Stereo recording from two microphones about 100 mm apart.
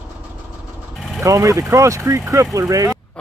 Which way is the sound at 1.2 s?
35° right (ahead or behind).